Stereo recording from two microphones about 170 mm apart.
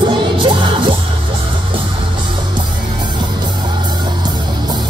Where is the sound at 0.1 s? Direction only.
30° right (ahead or behind).